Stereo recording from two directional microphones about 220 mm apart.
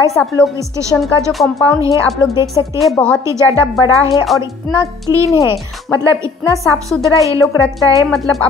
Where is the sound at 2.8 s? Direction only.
5° left (ahead or behind).